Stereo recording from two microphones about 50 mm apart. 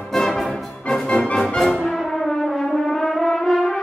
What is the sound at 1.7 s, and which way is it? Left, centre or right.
Brass instrument, centre.